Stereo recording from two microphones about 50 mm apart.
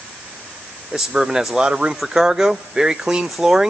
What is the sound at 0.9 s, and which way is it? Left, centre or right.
Speech, centre.